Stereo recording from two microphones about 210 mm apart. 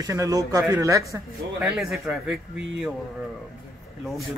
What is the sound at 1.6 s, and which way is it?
Speech, centre (ahead or behind).